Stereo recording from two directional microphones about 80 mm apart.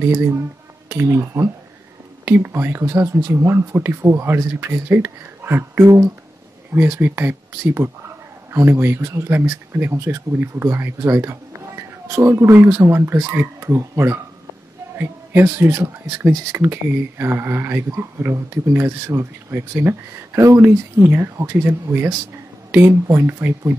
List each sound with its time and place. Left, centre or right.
0.0 s speech: right
2.2 s speech: right